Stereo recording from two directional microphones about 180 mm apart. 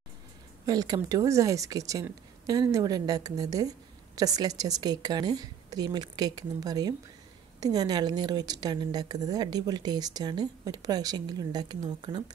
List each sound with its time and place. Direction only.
0.7 s a woman's voice: 20° right (ahead or behind)